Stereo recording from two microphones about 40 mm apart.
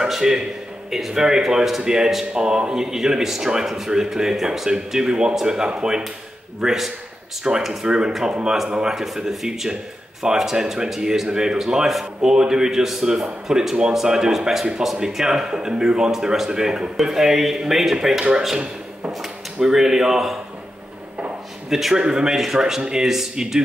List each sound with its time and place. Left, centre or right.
0.0 s a man's voice: centre
9.5 s speech: centre
19.2 s speech: centre
21.6 s a man's voice: centre
21.9 s speech: centre